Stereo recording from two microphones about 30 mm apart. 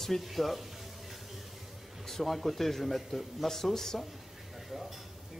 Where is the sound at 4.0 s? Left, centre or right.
Centre.